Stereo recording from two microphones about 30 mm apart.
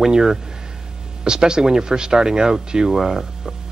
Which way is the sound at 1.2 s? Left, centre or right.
Right.